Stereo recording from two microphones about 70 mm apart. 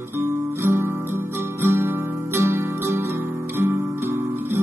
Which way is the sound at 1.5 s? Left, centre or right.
Right.